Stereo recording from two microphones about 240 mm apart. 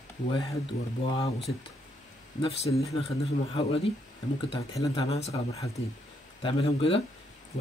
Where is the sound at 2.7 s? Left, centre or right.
Centre.